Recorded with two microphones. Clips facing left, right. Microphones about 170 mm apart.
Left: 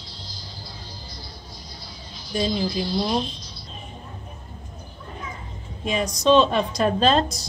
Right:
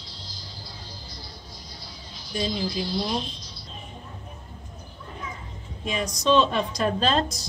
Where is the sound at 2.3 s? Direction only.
45° left (ahead or behind).